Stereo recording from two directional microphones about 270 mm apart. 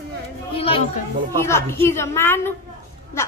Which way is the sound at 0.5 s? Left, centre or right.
Left.